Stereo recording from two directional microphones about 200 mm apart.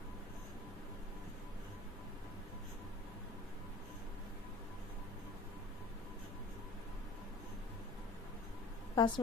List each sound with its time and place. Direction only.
8.9 s a woman's voice: 20° left (ahead or behind)